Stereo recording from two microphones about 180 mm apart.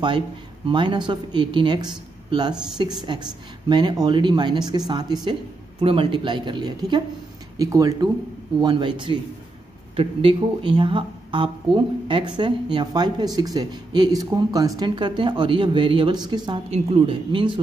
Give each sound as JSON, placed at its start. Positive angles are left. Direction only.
{"t": 0.7, "sound": "speech", "side_deg": -25}
{"t": 9.9, "sound": "speech", "side_deg": -30}